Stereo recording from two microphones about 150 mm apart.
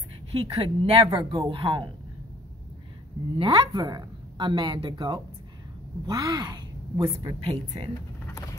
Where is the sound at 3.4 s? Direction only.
30° right (ahead or behind).